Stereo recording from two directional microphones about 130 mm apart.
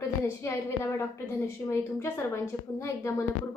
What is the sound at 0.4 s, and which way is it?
A woman's voice, 20° left (ahead or behind).